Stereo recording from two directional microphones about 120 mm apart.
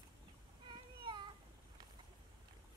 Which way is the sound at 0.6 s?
40° right (ahead or behind).